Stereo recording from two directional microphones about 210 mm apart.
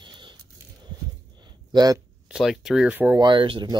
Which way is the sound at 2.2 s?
Centre (ahead or behind).